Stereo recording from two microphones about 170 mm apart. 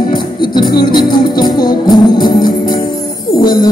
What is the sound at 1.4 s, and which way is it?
Music, 25° left (ahead or behind).